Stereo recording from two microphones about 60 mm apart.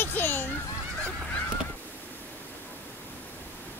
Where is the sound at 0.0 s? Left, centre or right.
Left.